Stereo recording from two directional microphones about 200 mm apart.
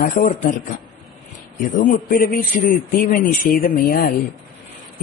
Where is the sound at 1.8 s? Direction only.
40° left (ahead or behind).